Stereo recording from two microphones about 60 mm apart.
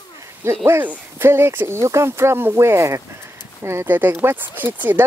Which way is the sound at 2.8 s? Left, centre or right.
Right.